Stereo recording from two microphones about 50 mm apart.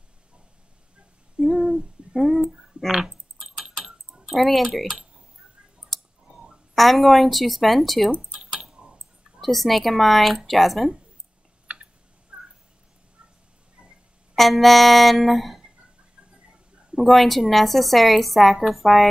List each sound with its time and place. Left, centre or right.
1.4 s a sound: centre
2.1 s a woman's voice: centre
2.9 s typing: centre
4.7 s a woman's voice: centre
5.9 s clicking: centre
6.3 s a sound: right
6.7 s a woman's voice: centre
8.4 s keys jangling: centre
9.4 s a woman's voice: centre
11.6 s a sound: right
12.3 s cat: right
14.3 s a woman's voice: centre
16.9 s a woman's voice: centre